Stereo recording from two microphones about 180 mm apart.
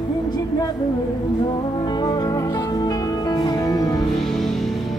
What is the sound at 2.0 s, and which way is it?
Music, 25° left (ahead or behind).